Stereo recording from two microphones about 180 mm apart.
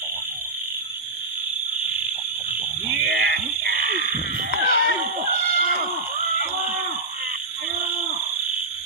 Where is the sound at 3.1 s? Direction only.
60° right (ahead or behind).